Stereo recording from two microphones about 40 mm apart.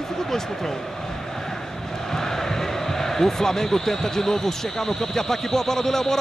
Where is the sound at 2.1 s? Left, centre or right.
Centre.